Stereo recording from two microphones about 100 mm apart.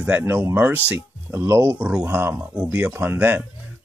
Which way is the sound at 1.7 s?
15° right (ahead or behind).